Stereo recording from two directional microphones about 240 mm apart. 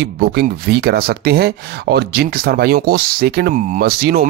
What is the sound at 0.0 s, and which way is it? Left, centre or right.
Speech, right.